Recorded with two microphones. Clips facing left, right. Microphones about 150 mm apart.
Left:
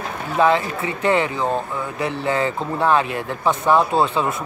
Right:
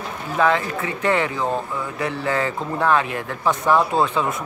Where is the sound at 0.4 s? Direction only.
25° left (ahead or behind).